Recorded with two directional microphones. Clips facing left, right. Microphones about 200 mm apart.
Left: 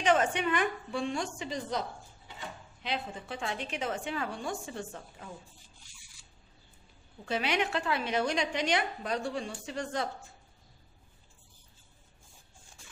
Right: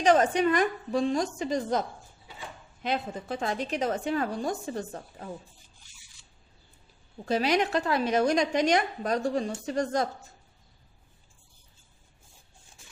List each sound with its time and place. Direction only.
0.0 s a woman's voice: 40° right (ahead or behind)
7.2 s a woman's voice: 40° right (ahead or behind)